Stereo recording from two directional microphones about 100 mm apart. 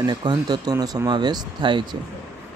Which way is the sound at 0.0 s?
45° right (ahead or behind).